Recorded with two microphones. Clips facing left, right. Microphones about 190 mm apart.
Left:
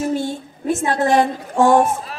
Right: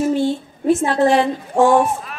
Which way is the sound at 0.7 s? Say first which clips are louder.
Right 3 dB; 45° left (ahead or behind).